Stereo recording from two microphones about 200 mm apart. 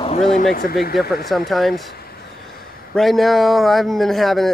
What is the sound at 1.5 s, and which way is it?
Speech, centre (ahead or behind).